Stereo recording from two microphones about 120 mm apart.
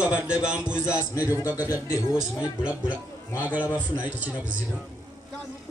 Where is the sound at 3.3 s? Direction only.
15° right (ahead or behind).